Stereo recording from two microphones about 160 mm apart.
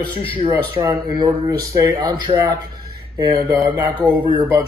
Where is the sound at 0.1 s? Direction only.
35° left (ahead or behind).